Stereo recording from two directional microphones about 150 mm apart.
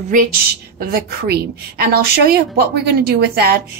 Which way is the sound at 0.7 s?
90° right.